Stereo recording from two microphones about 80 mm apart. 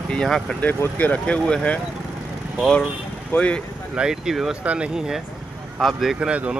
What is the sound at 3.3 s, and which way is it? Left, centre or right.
Speech, centre.